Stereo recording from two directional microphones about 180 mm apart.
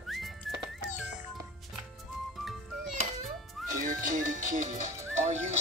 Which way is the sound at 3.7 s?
50° right (ahead or behind).